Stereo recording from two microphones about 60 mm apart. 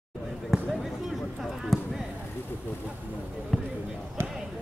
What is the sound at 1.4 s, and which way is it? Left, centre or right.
Basketball bounce, centre.